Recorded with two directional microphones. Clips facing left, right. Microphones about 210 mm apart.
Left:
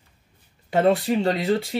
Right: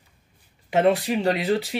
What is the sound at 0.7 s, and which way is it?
Speech, centre (ahead or behind).